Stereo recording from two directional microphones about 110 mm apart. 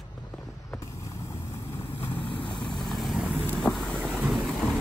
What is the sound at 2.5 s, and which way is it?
Vehicle, 5° left (ahead or behind).